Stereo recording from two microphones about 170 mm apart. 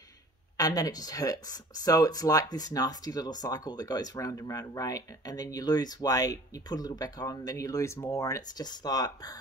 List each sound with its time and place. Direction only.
0.6 s speech: 20° left (ahead or behind)